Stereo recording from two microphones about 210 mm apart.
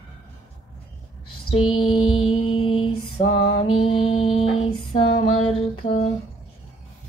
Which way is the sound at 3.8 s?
25° left (ahead or behind).